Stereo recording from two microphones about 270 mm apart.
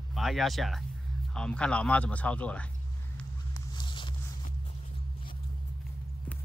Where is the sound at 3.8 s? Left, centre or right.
Centre.